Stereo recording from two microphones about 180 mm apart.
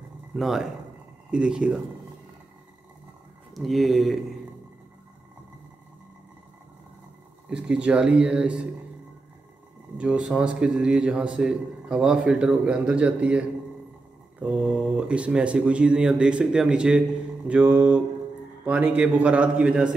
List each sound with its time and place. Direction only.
0.4 s a man's voice: centre (ahead or behind)
3.5 s a man's voice: centre (ahead or behind)
7.4 s a man's voice: 5° right (ahead or behind)
9.9 s a man's voice: 5° right (ahead or behind)